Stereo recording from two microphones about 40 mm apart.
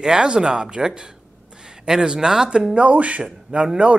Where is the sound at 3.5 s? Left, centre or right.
Right.